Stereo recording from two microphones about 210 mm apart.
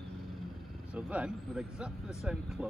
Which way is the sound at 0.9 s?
5° right (ahead or behind).